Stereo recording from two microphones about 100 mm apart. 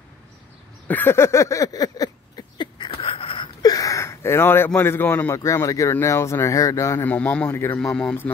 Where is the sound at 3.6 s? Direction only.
40° left (ahead or behind).